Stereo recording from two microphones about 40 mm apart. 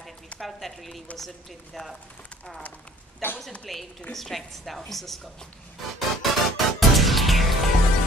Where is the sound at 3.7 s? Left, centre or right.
Centre.